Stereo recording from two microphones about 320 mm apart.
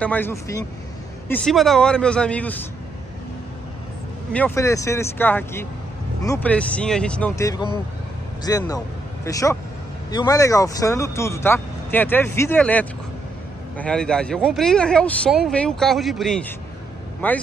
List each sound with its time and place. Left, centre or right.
0.0 s speech: centre
4.3 s a man's voice: centre